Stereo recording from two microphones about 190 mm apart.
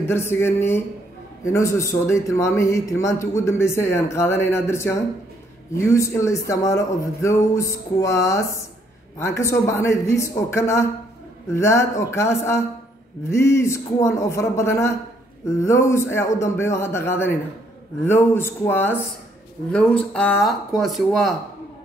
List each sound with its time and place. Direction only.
0.1 s speech: 10° left (ahead or behind)